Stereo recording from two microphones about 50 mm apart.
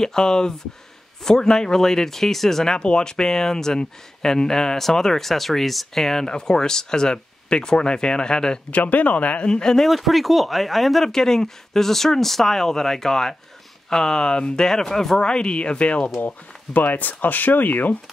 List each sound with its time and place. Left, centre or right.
0.0 s speech: centre
8.7 s speech: left; by 9.8 s centre
9.8 s speech: centre; by 16.1 s left
16.2 s speech: left